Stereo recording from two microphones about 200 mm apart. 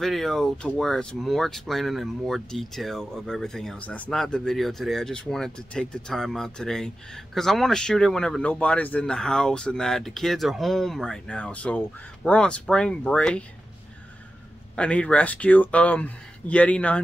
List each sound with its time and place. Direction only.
0.0 s speech: centre (ahead or behind)
14.8 s speech: 5° left (ahead or behind)